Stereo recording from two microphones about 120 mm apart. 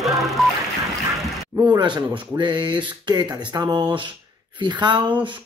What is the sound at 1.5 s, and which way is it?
Speech, 40° right (ahead or behind).